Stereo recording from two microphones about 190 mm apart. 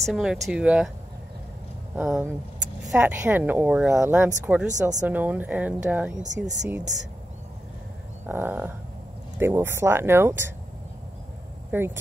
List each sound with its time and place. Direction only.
0.0 s speech: 5° right (ahead or behind)
2.0 s speech: 5° right (ahead or behind)
6.2 s speech: 40° right (ahead or behind)
8.3 s speech: 10° right (ahead or behind)
11.7 s speech: 10° right (ahead or behind)